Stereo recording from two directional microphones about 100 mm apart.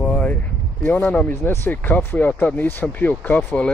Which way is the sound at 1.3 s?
25° left (ahead or behind).